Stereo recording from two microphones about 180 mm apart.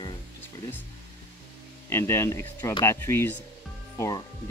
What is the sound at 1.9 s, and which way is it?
Speech, 15° left (ahead or behind).